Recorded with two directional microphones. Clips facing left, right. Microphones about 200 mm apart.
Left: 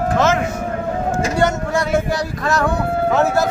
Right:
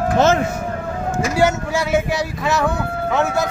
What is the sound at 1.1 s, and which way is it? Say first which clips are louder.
Speech: right 2 dB; 5° right (ahead or behind).